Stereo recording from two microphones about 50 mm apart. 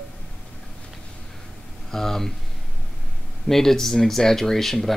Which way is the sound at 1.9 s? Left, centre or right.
Centre.